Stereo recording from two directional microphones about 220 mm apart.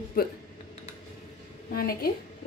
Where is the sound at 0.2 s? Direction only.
45° left (ahead or behind).